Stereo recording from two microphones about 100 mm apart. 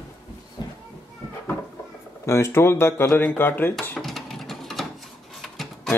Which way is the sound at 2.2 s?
30° left (ahead or behind).